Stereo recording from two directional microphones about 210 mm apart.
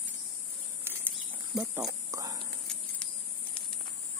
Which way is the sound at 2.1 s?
15° right (ahead or behind).